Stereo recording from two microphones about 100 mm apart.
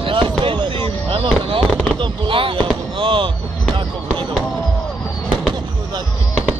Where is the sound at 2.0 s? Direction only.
60° right (ahead or behind).